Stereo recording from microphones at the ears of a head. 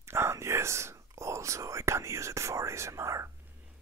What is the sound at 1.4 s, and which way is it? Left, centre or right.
Whispering, right.